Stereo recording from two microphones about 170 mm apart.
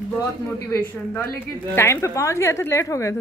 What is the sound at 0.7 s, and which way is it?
A woman's voice, 10° left (ahead or behind).